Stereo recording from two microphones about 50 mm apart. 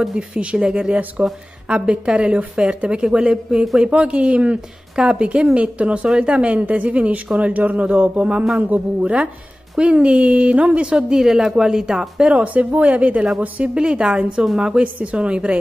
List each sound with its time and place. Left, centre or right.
0.3 s speech: right
1.2 s speech: right
8.5 s speech: right; by 12.1 s centre
12.2 s speech: right
13.7 s speech: centre
14.8 s speech: right